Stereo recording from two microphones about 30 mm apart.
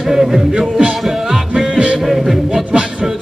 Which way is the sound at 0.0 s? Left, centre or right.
Centre.